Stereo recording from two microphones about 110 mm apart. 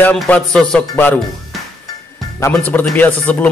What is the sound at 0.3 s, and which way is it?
Speech, 10° left (ahead or behind).